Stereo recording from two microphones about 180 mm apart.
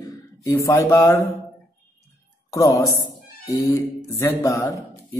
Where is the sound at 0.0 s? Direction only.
20° left (ahead or behind).